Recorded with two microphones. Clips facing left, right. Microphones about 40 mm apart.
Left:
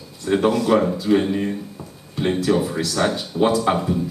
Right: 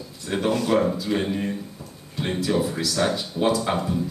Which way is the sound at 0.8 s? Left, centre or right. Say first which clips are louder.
Left 5 dB; centre.